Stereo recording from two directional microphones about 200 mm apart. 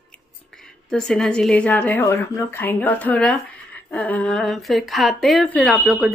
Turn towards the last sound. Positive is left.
turn(degrees=0)  # may be behind; listen again after turning